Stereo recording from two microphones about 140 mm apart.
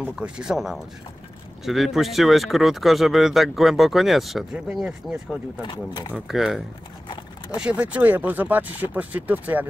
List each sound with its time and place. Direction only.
0.0 s speech: 5° right (ahead or behind)
5.6 s speech: 30° left (ahead or behind)
6.1 s speech: centre (ahead or behind)